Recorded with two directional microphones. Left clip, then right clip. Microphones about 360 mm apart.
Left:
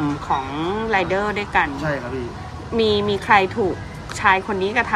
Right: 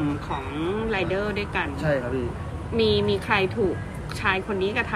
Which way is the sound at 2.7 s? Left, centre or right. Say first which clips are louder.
Left 3 dB; left.